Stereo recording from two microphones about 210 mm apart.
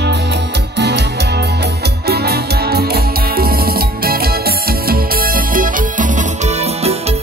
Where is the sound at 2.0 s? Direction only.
50° right (ahead or behind).